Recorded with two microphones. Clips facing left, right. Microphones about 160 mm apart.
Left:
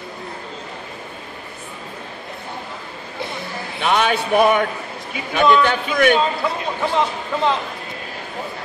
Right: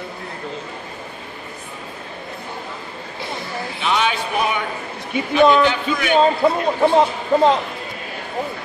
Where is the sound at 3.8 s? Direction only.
55° left (ahead or behind).